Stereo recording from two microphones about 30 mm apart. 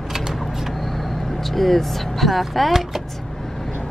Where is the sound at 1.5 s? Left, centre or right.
Centre.